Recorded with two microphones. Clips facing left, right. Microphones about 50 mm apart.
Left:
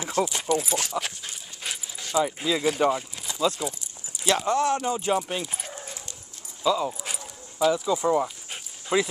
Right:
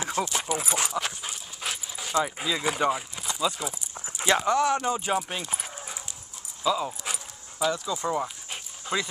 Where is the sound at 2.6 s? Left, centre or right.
Centre.